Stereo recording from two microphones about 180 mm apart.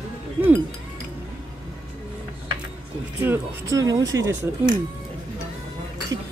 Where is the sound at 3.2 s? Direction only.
15° right (ahead or behind).